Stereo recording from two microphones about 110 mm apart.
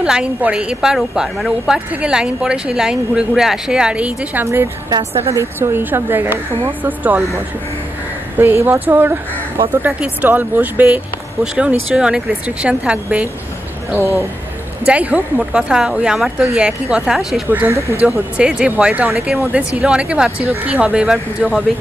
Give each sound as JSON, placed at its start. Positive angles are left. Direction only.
{"t": 0.0, "sound": "a woman's voice", "side_deg": -10}
{"t": 8.4, "sound": "a woman's voice", "side_deg": -20}
{"t": 13.9, "sound": "speech", "side_deg": 25}
{"t": 14.9, "sound": "speech", "side_deg": -15}
{"t": 17.5, "sound": "speech", "side_deg": -15}